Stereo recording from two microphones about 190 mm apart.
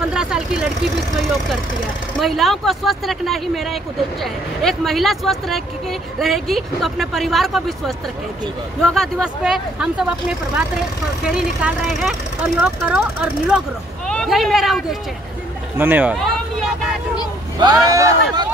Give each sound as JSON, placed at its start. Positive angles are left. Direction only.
{"t": 0.1, "sound": "speech", "side_deg": -5}
{"t": 2.1, "sound": "speech", "side_deg": 0}
{"t": 17.6, "sound": "speech", "side_deg": -20}